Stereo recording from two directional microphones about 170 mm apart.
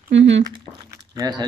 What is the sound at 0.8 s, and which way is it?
Speech, 25° right (ahead or behind).